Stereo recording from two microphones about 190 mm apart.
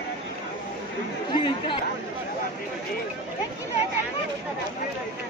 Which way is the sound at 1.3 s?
25° left (ahead or behind).